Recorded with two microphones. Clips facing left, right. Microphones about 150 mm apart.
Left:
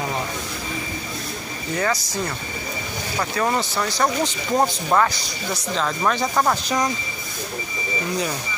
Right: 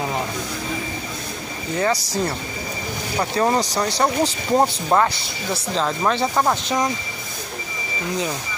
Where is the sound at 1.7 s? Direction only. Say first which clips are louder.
Right 2 dB; 30° right (ahead or behind).